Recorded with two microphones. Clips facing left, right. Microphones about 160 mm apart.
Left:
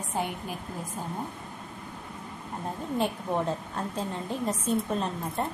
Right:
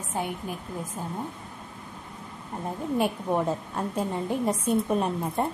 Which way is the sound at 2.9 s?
10° right (ahead or behind).